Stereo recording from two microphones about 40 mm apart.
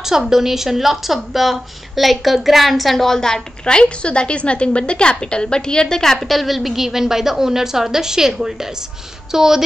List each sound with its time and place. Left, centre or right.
0.0 s a woman's voice: centre
3.1 s a woman's voice: centre
6.1 s a woman's voice: centre